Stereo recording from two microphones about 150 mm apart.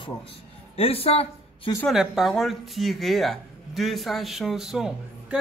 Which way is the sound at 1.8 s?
5° right (ahead or behind).